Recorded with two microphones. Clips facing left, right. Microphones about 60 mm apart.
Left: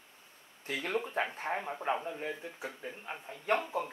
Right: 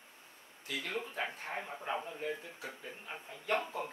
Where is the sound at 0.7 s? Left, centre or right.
Left.